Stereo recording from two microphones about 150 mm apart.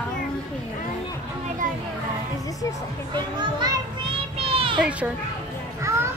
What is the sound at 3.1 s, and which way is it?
Speech, 30° right (ahead or behind).